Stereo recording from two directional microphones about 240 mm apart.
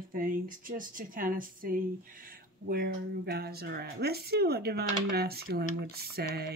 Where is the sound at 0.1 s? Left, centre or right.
Right.